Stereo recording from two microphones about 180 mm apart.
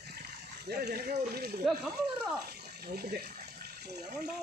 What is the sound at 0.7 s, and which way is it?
Speech, 60° right (ahead or behind).